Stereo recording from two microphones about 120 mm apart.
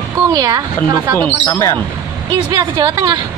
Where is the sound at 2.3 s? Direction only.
35° right (ahead or behind).